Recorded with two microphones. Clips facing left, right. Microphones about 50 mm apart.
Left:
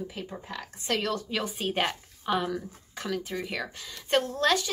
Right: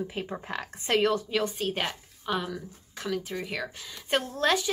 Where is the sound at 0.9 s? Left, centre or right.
Centre.